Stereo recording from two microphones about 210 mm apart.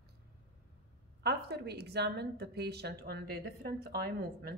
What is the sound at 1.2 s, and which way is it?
A woman's voice, 50° right (ahead or behind).